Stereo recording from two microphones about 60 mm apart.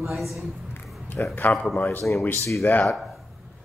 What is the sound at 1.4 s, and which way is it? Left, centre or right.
Speech, left.